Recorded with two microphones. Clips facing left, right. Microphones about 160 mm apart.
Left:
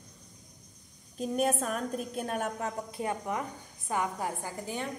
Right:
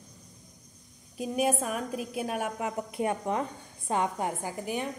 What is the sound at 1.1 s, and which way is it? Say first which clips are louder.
A woman's voice: right 1 dB; 5° right (ahead or behind).